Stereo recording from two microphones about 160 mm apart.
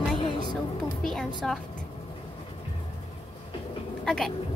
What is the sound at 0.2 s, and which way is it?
Music, 30° left (ahead or behind).